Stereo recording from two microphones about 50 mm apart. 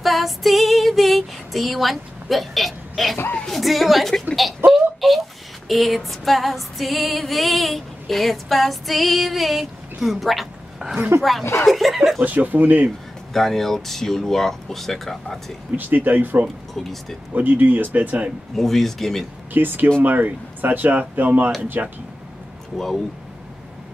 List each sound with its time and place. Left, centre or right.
0.0 s female singing: centre
4.6 s a sound: centre
5.7 s female singing: centre
10.0 s a woman's voice: centre
11.1 s female singing: centre
12.2 s speech: right
13.3 s female singing: centre
15.7 s speech: right
18.5 s female singing: centre
19.5 s speech: right
21.8 s speech: right